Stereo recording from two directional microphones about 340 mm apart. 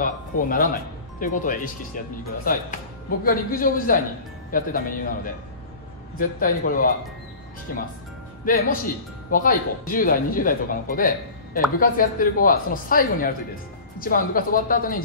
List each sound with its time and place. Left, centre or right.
0.0 s speech: left